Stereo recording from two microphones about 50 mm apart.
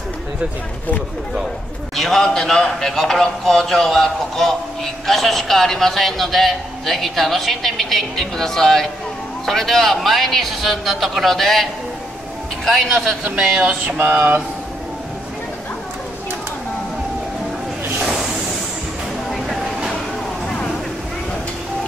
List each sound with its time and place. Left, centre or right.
2.0 s a man's voice: centre
13.2 s speech: right
13.9 s a sound: right
18.0 s snake: centre
19.5 s vehicle: centre